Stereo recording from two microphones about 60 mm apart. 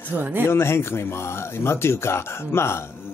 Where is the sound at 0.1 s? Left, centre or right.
Right.